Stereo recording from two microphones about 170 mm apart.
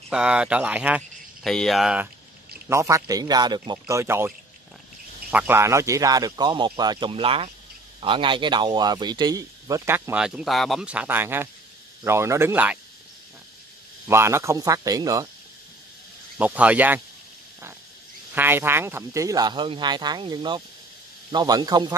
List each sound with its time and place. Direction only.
0.1 s speech: 5° right (ahead or behind)
1.4 s speech: 5° left (ahead or behind)
2.7 s speech: 20° right (ahead or behind)
3.8 s speech: 15° right (ahead or behind)
5.3 s speech: 10° right (ahead or behind)
14.0 s speech: 15° right (ahead or behind)
16.3 s speech: 10° right (ahead or behind)
18.3 s speech: 10° right (ahead or behind)